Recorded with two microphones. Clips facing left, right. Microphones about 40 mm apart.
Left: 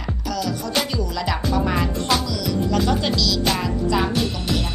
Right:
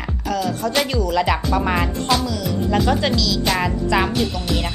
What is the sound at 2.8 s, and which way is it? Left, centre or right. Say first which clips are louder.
Speech: right 3 dB; centre.